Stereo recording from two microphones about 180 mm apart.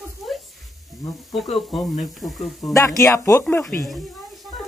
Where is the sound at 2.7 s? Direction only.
15° left (ahead or behind).